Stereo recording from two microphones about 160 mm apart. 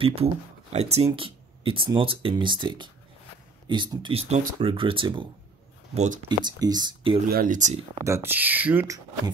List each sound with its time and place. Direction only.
0.0 s speech: 40° right (ahead or behind)
5.9 s speech: 50° right (ahead or behind)
6.2 s speech: 25° right (ahead or behind)
7.2 s speech: 60° right (ahead or behind)
8.0 s speech: 15° right (ahead or behind)